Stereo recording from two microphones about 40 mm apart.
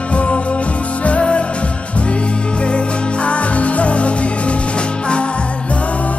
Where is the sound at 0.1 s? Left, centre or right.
Left.